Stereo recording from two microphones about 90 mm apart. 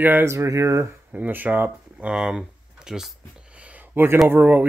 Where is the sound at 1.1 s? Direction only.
20° right (ahead or behind).